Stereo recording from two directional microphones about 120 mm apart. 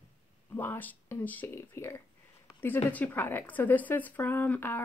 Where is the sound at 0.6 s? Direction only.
15° left (ahead or behind).